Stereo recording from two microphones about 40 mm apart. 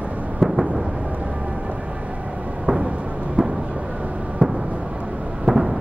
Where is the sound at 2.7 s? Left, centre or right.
Right.